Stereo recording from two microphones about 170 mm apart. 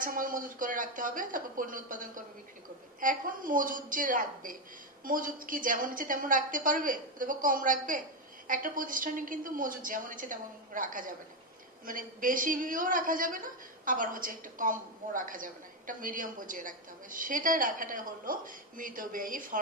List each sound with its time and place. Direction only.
0.0 s a woman's voice: 55° right (ahead or behind)